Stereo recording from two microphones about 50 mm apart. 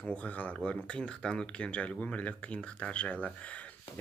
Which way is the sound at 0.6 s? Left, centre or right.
Left.